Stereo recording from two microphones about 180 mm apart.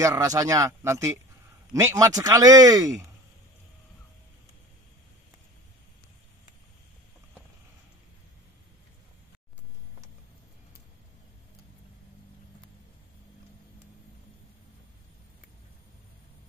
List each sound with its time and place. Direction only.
0.0 s speech: 20° right (ahead or behind)